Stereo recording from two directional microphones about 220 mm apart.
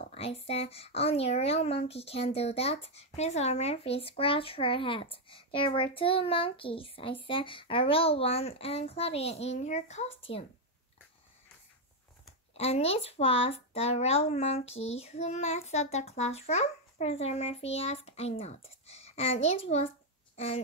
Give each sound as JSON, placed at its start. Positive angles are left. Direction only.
{"t": 0.1, "sound": "speech", "side_deg": 25}
{"t": 12.5, "sound": "a child's voice", "side_deg": 30}